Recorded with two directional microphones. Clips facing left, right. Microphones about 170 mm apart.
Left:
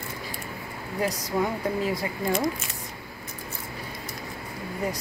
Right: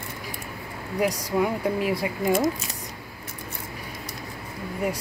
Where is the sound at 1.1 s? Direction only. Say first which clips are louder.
Right 2 dB; 10° right (ahead or behind).